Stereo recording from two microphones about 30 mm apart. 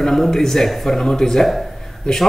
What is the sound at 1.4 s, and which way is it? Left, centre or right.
Speech, centre.